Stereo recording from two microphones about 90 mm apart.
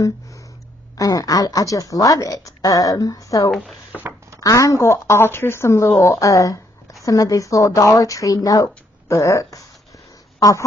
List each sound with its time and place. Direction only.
0.9 s a woman's voice: 40° left (ahead or behind)
3.5 s speech: centre (ahead or behind)
4.4 s a woman's voice: 40° left (ahead or behind)